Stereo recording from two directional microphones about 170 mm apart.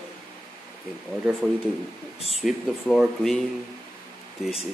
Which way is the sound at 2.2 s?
35° left (ahead or behind).